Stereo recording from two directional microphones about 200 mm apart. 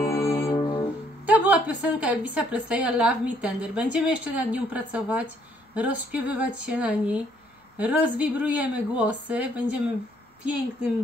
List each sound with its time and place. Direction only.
0.1 s music: 15° left (ahead or behind)
1.2 s a woman's voice: 10° right (ahead or behind)